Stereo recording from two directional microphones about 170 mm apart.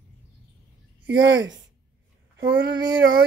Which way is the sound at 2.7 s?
25° right (ahead or behind).